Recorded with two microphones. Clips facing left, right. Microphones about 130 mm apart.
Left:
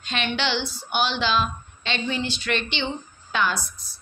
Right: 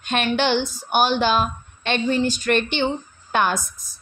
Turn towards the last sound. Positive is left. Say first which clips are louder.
# right 3 dB
turn(degrees=-45)  # may be behind; listen again after turning